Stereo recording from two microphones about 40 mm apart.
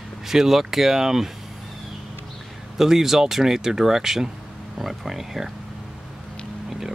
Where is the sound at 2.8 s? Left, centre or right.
Centre.